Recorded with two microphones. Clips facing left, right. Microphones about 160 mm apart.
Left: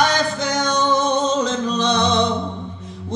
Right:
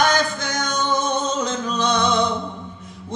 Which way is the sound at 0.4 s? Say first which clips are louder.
Left 5 dB; 35° left (ahead or behind).